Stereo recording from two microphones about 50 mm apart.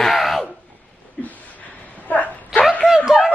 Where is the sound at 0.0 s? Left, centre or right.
Centre.